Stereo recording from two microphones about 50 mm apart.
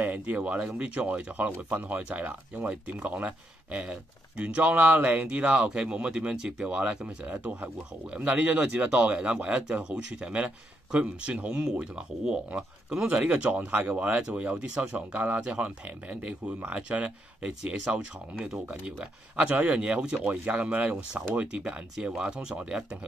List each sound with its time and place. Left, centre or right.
0.0 s speech: right
5.2 s speech: centre
13.5 s speech: right; by 19.5 s centre
19.5 s speech: right
19.8 s speech: centre